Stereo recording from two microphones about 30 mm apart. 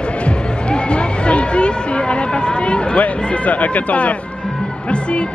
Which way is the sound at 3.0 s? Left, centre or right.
Left.